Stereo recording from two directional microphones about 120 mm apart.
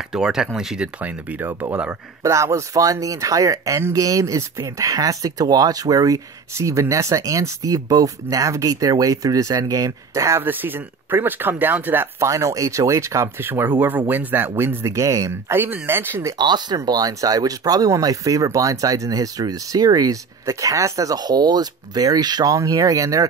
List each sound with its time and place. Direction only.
0.1 s speech: 5° right (ahead or behind)
2.2 s speech: 25° right (ahead or behind)
16.3 s speech: 35° right (ahead or behind)